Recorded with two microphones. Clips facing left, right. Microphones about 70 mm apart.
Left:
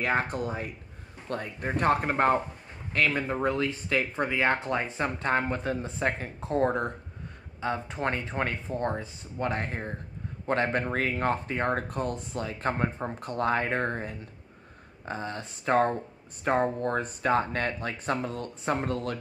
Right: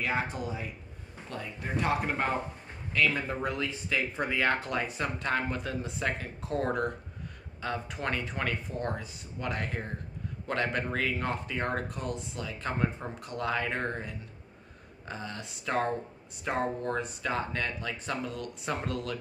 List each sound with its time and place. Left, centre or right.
0.0 s speech: left
3.3 s speech: left